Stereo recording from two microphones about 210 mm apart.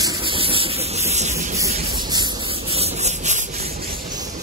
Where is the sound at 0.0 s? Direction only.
20° right (ahead or behind).